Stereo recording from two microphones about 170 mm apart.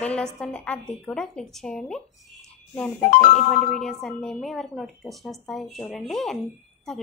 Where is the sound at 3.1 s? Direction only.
50° left (ahead or behind).